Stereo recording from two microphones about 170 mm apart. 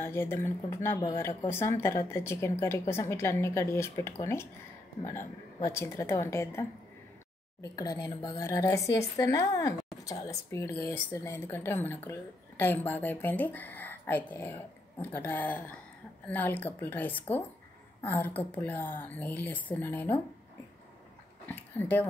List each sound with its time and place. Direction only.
0.0 s a woman's voice: 15° left (ahead or behind)
7.6 s a woman's voice: 20° left (ahead or behind)
21.5 s speech: 10° left (ahead or behind)